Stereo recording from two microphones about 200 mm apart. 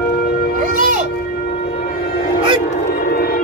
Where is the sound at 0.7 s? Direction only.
45° right (ahead or behind).